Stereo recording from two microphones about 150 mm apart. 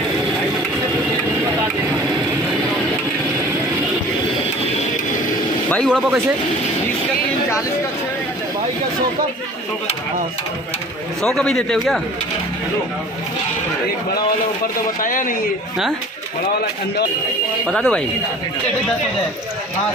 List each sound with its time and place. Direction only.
5.9 s speech: 5° right (ahead or behind)
11.2 s a man's voice: centre (ahead or behind)
15.0 s speech: 65° left (ahead or behind)
17.6 s a man's voice: 5° left (ahead or behind)